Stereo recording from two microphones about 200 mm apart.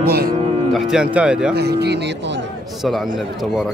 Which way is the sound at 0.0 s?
50° right (ahead or behind).